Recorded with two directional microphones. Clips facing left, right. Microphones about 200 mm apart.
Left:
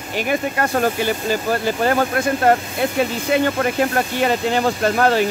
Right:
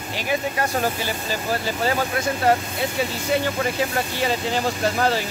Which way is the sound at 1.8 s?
55° left (ahead or behind).